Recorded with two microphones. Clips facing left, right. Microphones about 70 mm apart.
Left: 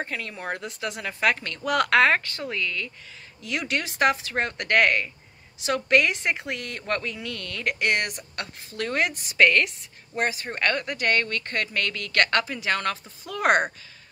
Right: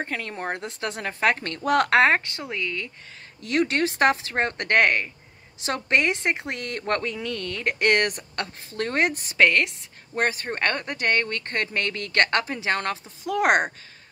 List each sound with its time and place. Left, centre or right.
0.0 s a woman's voice: right
10.1 s a woman's voice: right